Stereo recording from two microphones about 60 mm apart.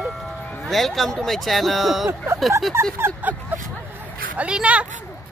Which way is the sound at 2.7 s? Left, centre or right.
Right.